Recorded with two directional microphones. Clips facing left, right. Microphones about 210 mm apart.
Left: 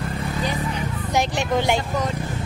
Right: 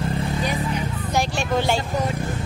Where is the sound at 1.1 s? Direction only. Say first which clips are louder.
Left 1 dB; 20° left (ahead or behind).